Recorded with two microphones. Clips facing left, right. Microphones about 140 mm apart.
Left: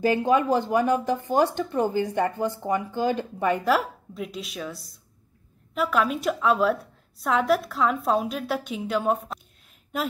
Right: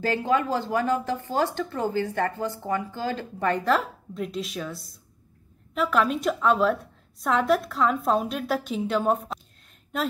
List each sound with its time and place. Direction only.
0.0 s a woman's voice: 15° left (ahead or behind)